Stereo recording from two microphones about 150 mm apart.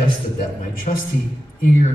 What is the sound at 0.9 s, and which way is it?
Speech, 50° left (ahead or behind).